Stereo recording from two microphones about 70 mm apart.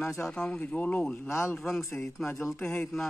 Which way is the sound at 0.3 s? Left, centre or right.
Centre.